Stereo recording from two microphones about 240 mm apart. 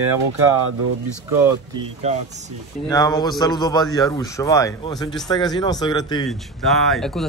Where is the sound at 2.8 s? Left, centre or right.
Centre.